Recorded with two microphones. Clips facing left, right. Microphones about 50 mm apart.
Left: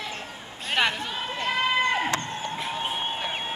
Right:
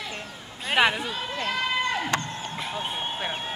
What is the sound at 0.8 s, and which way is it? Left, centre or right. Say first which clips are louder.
Speech: right 3 dB; centre.